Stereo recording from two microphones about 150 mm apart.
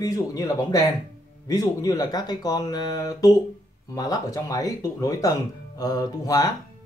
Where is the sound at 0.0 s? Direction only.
25° left (ahead or behind).